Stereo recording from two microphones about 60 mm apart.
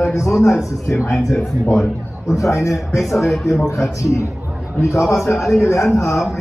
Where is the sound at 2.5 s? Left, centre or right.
Left.